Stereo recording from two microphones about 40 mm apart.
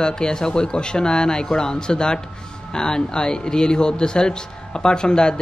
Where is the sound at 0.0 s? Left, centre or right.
Centre.